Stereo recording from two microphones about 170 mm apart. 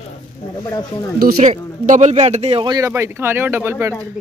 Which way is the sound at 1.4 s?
40° right (ahead or behind).